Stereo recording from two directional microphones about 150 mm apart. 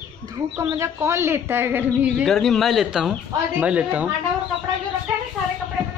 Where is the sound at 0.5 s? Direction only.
20° right (ahead or behind).